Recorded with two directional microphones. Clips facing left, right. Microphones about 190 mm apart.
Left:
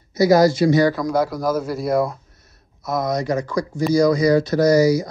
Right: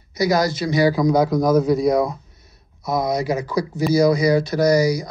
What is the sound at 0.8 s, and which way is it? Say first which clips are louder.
Speech: right 3 dB; centre (ahead or behind).